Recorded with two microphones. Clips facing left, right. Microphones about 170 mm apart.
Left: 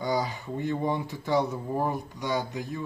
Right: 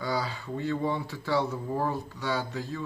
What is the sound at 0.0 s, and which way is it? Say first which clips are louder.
Speech: left 3 dB; 20° left (ahead or behind).